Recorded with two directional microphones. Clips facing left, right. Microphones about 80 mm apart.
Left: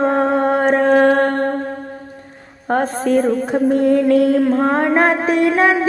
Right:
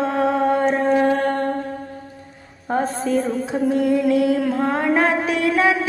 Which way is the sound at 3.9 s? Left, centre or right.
Left.